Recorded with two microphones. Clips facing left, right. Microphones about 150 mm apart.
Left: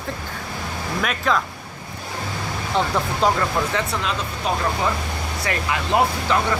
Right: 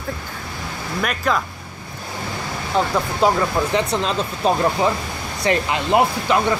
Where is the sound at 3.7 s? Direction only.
30° right (ahead or behind).